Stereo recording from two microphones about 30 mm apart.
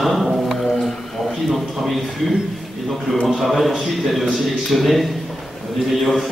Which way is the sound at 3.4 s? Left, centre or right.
Centre.